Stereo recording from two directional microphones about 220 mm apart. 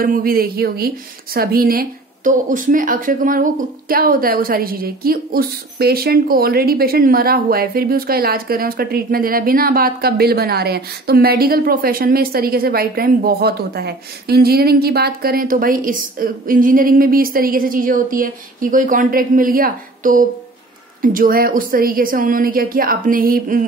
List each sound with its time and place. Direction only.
0.0 s a woman's voice: 40° right (ahead or behind)